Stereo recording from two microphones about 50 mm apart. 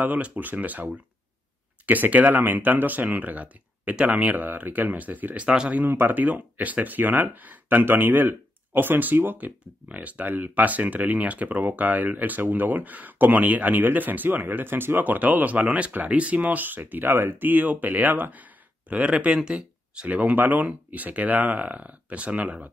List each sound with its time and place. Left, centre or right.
0.0 s speech: right
1.9 s speech: right
5.9 s speech: right
6.1 s speech: right
9.8 s speech: right